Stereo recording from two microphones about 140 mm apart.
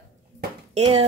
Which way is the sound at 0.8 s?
45° right (ahead or behind).